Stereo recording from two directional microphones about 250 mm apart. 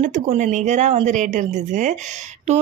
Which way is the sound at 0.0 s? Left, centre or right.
Right.